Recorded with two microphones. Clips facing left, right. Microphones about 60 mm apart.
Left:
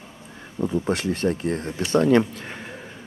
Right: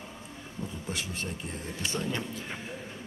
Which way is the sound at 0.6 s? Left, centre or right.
Left.